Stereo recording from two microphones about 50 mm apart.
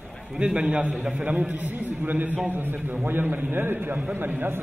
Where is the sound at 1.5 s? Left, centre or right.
Right.